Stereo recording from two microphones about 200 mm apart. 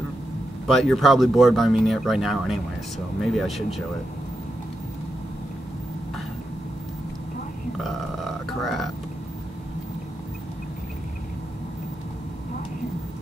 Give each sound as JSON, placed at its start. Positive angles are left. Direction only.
{"t": 0.7, "sound": "speech", "side_deg": 0}
{"t": 7.8, "sound": "speech", "side_deg": 0}